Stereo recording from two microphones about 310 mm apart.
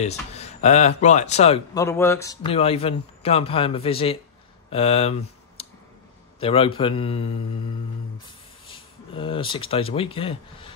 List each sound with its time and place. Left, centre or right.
0.0 s speech: left
5.6 s clicking: centre
6.4 s speech: centre
8.6 s speech: centre